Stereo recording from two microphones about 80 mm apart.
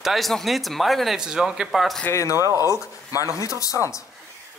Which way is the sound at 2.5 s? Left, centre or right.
Right.